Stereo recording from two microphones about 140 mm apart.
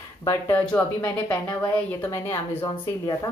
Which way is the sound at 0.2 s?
20° left (ahead or behind).